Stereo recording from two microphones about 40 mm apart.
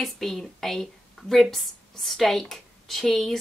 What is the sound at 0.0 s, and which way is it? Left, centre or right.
A woman's voice, centre.